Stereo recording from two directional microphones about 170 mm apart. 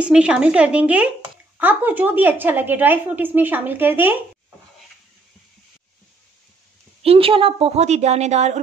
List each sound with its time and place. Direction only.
0.0 s a woman's voice: 5° right (ahead or behind)
7.0 s a woman's voice: 35° right (ahead or behind)